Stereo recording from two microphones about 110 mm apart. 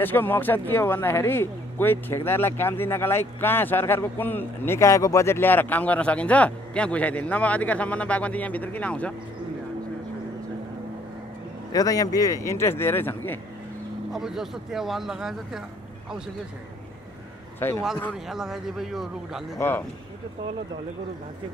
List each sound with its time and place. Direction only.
0.0 s speech: 20° left (ahead or behind)
11.7 s speech: 35° left (ahead or behind)
14.1 s speech: 5° right (ahead or behind)
17.6 s speech: 20° left (ahead or behind)
18.1 s speech: 5° right (ahead or behind)